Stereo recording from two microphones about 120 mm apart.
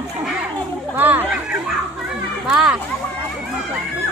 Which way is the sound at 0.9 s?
15° right (ahead or behind).